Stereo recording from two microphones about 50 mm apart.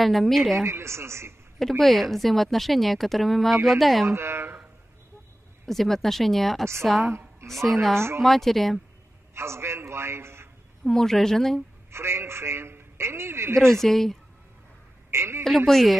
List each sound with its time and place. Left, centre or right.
0.0 s speech: centre
0.7 s a woman's voice: right
1.6 s speech: centre
4.1 s speech: right
5.7 s speech: centre
7.1 s a sound: right
7.4 s speech: centre
9.3 s a man's voice: right
10.8 s a woman's voice: centre
11.9 s a man's voice: right
13.6 s speech: centre
15.0 s a sound: right
15.4 s speech: centre